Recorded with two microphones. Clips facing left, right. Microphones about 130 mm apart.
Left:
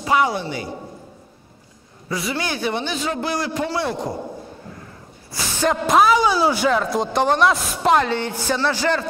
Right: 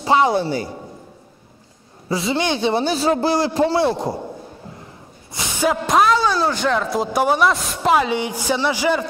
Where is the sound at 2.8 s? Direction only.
35° right (ahead or behind).